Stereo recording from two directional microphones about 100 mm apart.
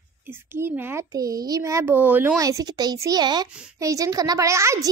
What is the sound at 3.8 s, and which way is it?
A child's voice, 35° right (ahead or behind).